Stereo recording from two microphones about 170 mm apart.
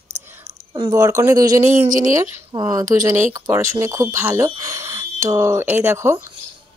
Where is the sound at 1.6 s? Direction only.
45° right (ahead or behind).